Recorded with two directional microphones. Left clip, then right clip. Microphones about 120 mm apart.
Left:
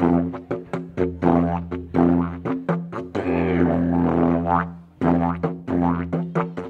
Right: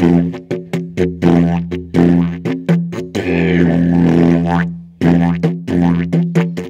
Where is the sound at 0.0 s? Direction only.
20° right (ahead or behind).